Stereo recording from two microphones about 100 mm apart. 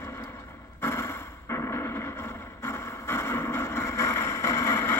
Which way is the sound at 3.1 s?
25° left (ahead or behind).